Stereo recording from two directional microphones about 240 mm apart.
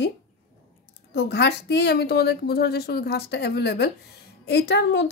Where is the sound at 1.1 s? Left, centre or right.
Left.